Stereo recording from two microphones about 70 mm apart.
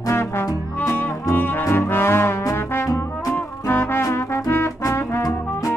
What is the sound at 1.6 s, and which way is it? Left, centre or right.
Trombone, left.